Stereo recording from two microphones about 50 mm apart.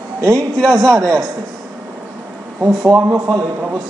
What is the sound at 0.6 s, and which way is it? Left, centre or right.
Speech, centre.